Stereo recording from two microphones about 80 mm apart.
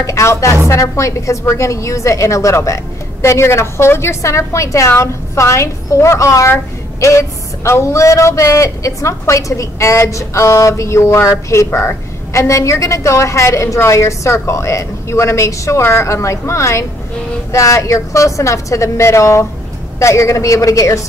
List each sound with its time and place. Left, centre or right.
0.0 s a man's voice: left